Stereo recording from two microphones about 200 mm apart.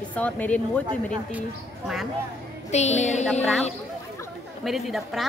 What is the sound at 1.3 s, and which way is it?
Speech, 5° right (ahead or behind).